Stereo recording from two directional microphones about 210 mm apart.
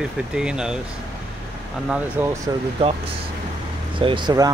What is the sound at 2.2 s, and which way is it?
Speech, 10° right (ahead or behind).